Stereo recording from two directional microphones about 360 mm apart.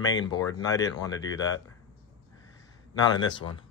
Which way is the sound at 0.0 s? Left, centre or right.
Centre.